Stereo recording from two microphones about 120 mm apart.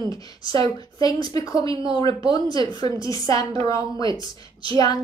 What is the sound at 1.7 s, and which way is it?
Speech, 45° right (ahead or behind).